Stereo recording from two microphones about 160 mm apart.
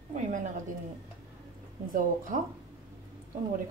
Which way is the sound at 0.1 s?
50° right (ahead or behind).